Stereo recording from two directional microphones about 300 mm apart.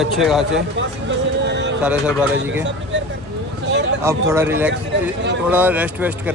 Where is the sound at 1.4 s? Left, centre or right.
Right.